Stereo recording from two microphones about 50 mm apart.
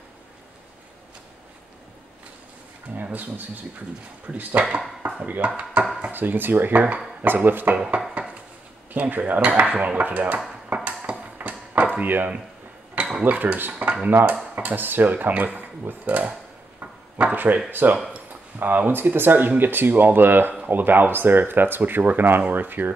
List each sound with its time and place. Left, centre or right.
3.0 s speech: right
5.8 s chopping: right
6.1 s speech: right
7.7 s speech: right
10.7 s a sound: right
12.9 s dishes: right
13.2 s speech: right
16.8 s a sound: right
17.6 s speech: right